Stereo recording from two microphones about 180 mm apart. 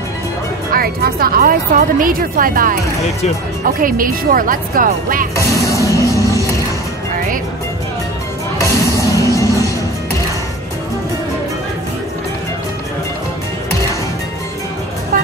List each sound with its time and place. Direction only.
0.7 s a woman's voice: 55° right (ahead or behind)
5.3 s music: 20° left (ahead or behind)
8.9 s music: 20° left (ahead or behind)